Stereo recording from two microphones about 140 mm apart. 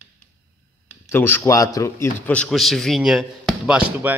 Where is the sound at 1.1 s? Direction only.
15° left (ahead or behind).